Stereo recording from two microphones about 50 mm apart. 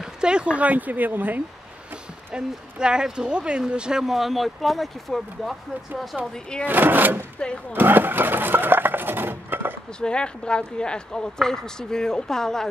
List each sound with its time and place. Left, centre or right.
0.2 s speech: centre; by 1.4 s right
2.3 s speech: centre
4.0 s speech: centre
6.7 s speech: right
7.7 s dishes: right
9.9 s speech: centre